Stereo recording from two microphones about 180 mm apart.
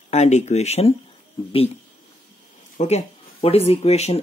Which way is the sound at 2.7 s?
40° left (ahead or behind).